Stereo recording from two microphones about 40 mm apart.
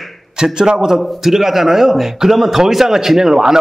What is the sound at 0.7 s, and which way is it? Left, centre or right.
A man's voice, centre.